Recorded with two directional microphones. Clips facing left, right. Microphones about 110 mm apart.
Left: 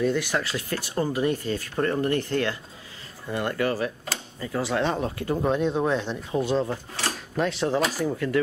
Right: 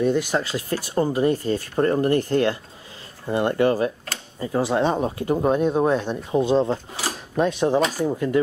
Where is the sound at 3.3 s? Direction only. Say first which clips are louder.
Right 6 dB; 25° right (ahead or behind).